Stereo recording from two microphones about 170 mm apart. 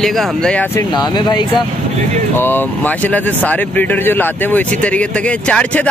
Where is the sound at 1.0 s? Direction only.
25° left (ahead or behind).